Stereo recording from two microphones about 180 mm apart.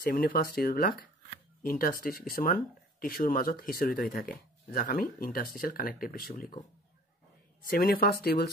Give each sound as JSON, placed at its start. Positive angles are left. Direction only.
{"t": 0.0, "sound": "speech", "side_deg": 55}
{"t": 7.6, "sound": "speech", "side_deg": 55}